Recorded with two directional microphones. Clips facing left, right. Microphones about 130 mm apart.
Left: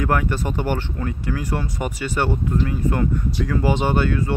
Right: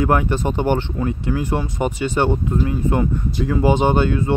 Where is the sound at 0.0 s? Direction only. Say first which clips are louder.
Right 4 dB; 20° right (ahead or behind).